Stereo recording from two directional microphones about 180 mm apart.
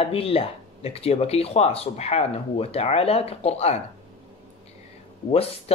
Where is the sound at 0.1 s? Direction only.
30° left (ahead or behind).